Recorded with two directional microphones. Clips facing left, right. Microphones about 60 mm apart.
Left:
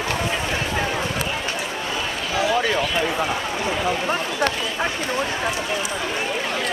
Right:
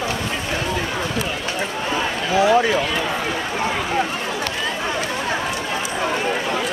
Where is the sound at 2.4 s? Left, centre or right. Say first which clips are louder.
Right 5 dB; right.